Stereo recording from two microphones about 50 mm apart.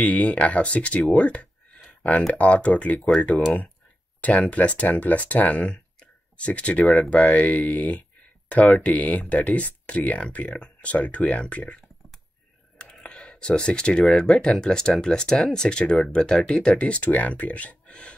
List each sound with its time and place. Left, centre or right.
0.0 s speech: left
1.9 s a sound: left
2.3 s speech: left
4.2 s speech: left
13.1 s speech: left